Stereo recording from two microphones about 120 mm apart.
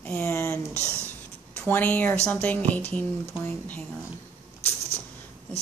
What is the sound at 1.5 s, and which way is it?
A woman's voice, 10° left (ahead or behind).